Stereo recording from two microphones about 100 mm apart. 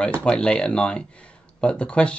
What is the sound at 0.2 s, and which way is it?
Speech, 10° left (ahead or behind).